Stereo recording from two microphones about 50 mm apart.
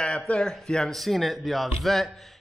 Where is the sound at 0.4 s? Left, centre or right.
Centre.